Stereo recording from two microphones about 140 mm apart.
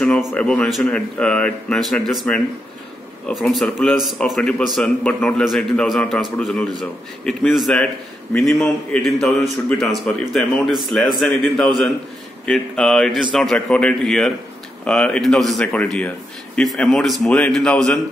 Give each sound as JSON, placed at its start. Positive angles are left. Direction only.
{"t": 0.3, "sound": "speech", "side_deg": 10}